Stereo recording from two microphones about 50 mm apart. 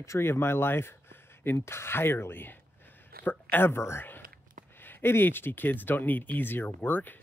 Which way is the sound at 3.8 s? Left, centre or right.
Left.